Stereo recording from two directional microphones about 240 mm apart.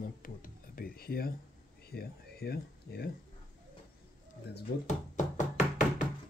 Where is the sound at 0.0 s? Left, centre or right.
Left.